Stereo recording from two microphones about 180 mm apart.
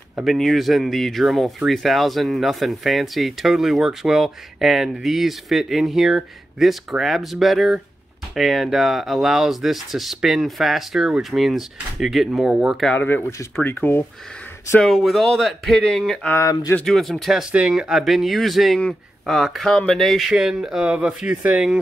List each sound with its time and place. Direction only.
0.1 s speech: centre (ahead or behind)
12.9 s speech: 10° left (ahead or behind)
14.8 s speech: centre (ahead or behind)
16.3 s speech: 15° left (ahead or behind)
16.8 s speech: centre (ahead or behind)